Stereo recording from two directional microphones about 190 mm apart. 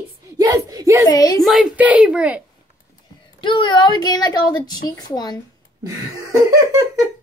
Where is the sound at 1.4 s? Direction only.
5° right (ahead or behind).